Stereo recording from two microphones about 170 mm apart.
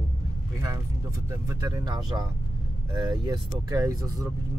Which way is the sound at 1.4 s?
20° right (ahead or behind).